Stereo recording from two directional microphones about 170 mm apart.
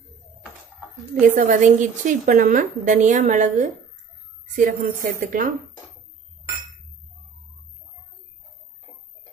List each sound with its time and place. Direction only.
1.3 s a woman's voice: 45° right (ahead or behind)